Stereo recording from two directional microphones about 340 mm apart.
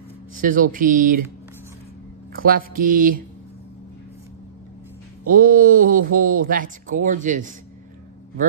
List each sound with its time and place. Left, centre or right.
0.4 s speech: right
2.3 s speech: right
5.3 s speech: right